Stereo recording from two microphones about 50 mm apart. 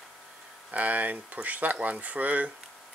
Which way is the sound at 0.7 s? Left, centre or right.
Right.